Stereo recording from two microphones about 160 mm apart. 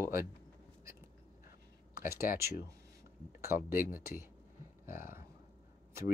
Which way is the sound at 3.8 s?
65° left (ahead or behind).